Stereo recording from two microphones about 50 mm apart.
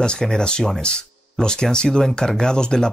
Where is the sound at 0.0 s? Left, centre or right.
Centre.